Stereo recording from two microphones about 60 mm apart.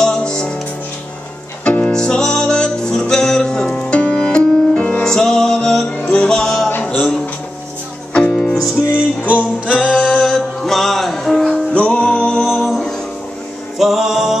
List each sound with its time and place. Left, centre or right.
0.0 s music: centre
1.6 s music: left
6.7 s music: left
8.1 s music: centre
8.9 s music: right
9.8 s singing: centre
10.1 s music: centre
11.7 s music: left; by 14.4 s centre